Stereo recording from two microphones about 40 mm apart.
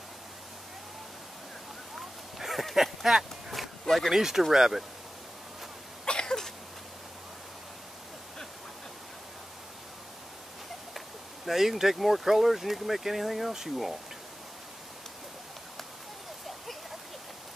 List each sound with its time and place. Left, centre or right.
2.0 s a sound: centre
4.1 s speech: centre
6.0 s cough: centre
11.4 s speech: centre